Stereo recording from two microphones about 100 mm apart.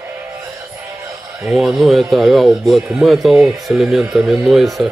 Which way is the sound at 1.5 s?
Centre (ahead or behind).